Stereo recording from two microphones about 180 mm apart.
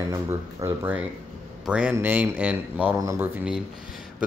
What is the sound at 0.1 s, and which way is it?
Speech, 15° right (ahead or behind).